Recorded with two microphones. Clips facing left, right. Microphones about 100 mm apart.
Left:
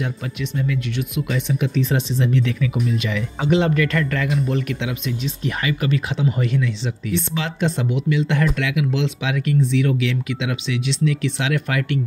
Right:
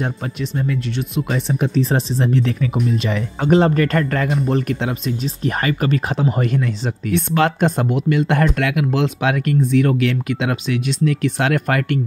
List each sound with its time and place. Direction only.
0.0 s speech: 40° right (ahead or behind)